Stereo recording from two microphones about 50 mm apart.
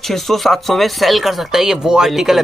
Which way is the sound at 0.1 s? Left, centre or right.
Centre.